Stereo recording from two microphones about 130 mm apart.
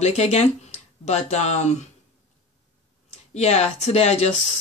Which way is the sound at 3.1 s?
55° left (ahead or behind).